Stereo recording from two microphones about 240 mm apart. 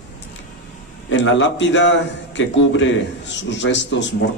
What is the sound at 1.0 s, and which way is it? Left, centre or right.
A man's voice, left.